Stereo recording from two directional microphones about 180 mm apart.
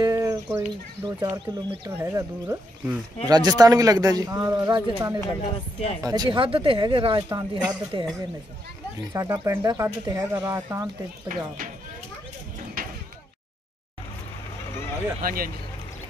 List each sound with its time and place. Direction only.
0.0 s a sound: 20° right (ahead or behind)
0.6 s speech: 20° right (ahead or behind)
1.9 s speech: 15° right (ahead or behind)
5.4 s speech: 40° left (ahead or behind)
6.0 s speech: 20° right (ahead or behind)
9.1 s speech: 15° right (ahead or behind)
11.2 s speech: 50° right (ahead or behind)
15.2 s speech: 55° right (ahead or behind)